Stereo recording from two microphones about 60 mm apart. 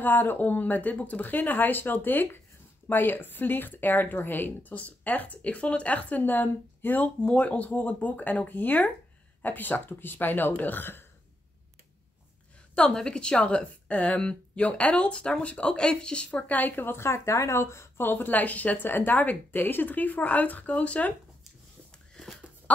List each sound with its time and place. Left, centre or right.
0.0 s speech: left
12.7 s a woman's voice: centre
16.4 s a woman's voice: left
18.0 s speech: left
21.9 s a sound: centre